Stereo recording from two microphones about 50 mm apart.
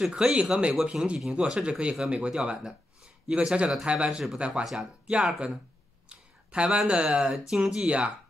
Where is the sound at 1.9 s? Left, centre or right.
Centre.